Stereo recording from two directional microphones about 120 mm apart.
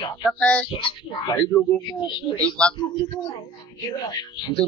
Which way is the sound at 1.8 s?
35° left (ahead or behind).